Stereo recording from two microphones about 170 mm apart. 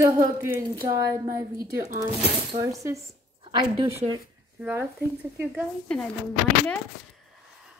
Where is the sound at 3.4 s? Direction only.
30° right (ahead or behind).